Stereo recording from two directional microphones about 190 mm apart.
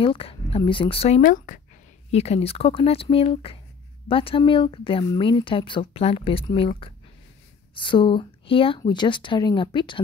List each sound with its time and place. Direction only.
0.0 s speech: 30° left (ahead or behind)
2.0 s speech: 35° left (ahead or behind)
7.7 s speech: 25° left (ahead or behind)